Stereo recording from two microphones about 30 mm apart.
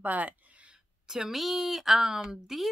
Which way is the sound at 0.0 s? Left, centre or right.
Right.